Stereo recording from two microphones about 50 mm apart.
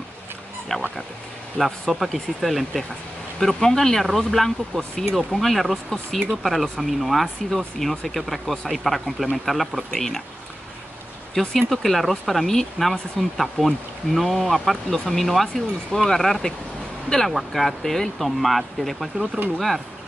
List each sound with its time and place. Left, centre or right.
0.7 s speech: centre
3.3 s speech: centre
11.3 s speech: centre